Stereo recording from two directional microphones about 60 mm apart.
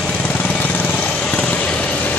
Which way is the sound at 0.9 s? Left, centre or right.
Centre.